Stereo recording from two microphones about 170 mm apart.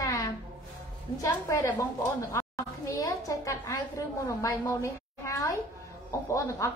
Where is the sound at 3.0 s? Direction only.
20° left (ahead or behind).